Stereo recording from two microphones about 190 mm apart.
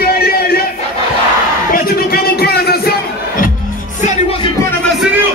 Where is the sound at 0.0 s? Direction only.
55° left (ahead or behind).